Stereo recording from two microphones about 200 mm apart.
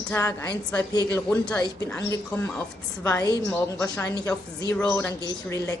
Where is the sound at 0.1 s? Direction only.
15° left (ahead or behind).